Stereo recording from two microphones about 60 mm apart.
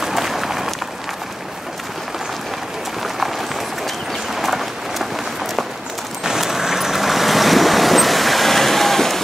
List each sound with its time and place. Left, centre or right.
0.0 s a sound: centre
3.0 s run: centre
4.4 s run: centre
6.2 s vehicle: centre